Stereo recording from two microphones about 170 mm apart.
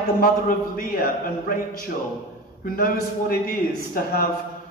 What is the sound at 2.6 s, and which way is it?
A man's voice, 55° left (ahead or behind).